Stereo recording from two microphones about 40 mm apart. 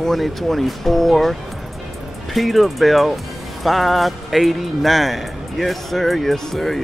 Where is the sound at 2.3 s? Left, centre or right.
Centre.